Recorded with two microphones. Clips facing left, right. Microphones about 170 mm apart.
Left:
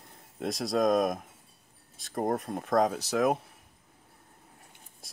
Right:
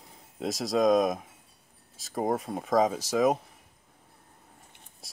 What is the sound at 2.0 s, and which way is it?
Speech, centre (ahead or behind).